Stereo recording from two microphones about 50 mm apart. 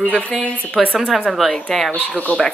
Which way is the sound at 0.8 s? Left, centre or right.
Centre.